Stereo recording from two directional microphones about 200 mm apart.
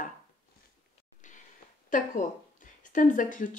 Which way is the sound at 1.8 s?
40° left (ahead or behind).